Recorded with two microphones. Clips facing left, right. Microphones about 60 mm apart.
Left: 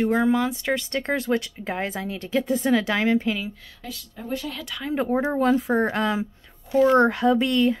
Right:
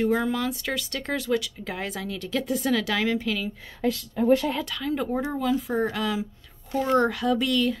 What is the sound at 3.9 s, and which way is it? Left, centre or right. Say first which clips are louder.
Speech: right 10 dB; right.